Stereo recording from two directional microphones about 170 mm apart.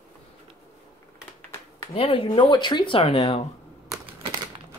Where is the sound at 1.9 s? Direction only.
35° left (ahead or behind).